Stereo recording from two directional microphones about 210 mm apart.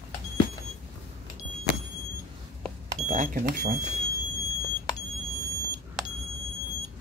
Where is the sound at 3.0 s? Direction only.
35° right (ahead or behind).